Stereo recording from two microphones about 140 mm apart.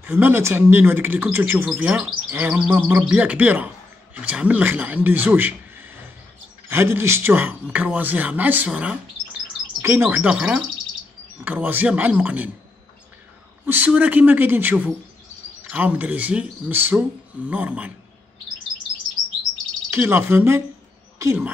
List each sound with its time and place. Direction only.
0.0 s speech: 15° right (ahead or behind)
13.7 s speech: 10° right (ahead or behind)
19.1 s chirp: centre (ahead or behind)
19.9 s speech: 15° right (ahead or behind)